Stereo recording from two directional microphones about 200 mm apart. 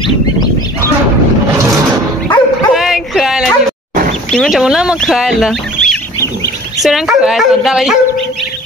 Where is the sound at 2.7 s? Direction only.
Centre (ahead or behind).